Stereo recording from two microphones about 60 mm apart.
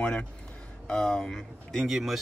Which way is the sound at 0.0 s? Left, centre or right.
Centre.